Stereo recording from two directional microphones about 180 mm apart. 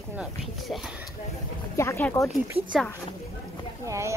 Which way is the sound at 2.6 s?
30° right (ahead or behind).